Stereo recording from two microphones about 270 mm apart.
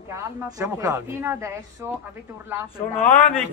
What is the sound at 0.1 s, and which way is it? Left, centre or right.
Speech, centre.